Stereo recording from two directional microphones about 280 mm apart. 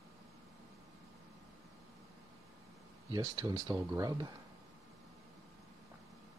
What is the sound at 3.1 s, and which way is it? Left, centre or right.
Speech, centre.